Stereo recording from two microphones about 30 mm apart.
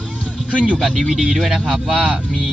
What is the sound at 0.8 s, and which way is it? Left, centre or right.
Speech, centre.